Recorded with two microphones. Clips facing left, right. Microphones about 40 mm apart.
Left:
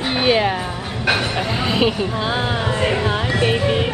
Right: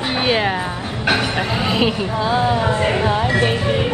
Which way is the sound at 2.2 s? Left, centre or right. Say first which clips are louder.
Right 7 dB; left.